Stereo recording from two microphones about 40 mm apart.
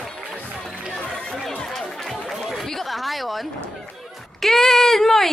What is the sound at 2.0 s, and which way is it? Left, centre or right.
Chatter, centre.